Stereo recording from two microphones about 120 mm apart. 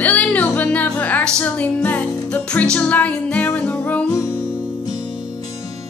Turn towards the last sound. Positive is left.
turn(degrees=10)  # may be behind; listen again after turning